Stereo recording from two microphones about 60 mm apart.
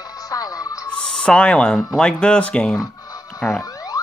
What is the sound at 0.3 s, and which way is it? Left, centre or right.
Music, left.